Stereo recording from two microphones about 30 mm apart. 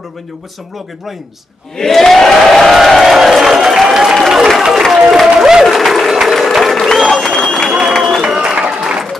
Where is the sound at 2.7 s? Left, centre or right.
Centre.